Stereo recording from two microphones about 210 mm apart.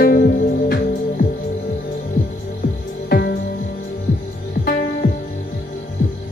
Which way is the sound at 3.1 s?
50° left (ahead or behind).